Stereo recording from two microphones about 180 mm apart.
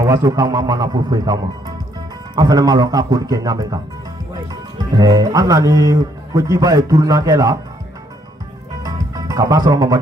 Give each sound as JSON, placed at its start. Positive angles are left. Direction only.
{"t": 0.0, "sound": "speech", "side_deg": -20}
{"t": 8.8, "sound": "music", "side_deg": -20}